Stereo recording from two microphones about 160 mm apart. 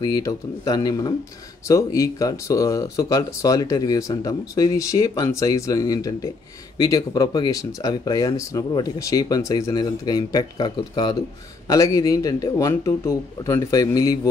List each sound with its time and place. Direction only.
0.0 s speech: 25° left (ahead or behind)